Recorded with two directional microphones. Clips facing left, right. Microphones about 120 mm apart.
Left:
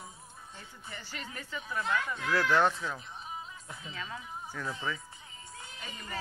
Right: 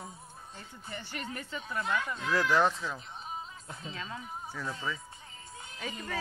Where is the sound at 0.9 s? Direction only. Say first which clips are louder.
Right 4 dB; 25° right (ahead or behind).